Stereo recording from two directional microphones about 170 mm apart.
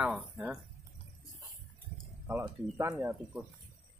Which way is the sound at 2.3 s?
15° right (ahead or behind).